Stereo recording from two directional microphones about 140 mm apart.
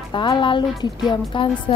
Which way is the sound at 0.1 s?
35° left (ahead or behind).